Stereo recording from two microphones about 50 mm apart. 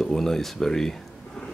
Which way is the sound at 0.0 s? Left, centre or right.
Centre.